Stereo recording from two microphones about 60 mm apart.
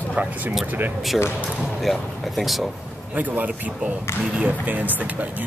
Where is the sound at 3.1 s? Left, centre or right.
Right.